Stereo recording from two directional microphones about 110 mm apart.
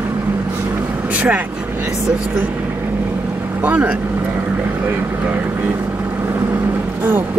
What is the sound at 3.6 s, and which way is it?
Speech, 15° right (ahead or behind).